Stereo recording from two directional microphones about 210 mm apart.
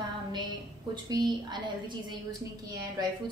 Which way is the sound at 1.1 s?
20° right (ahead or behind).